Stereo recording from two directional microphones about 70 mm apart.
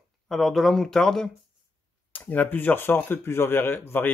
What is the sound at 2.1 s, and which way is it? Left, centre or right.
A man's voice, left.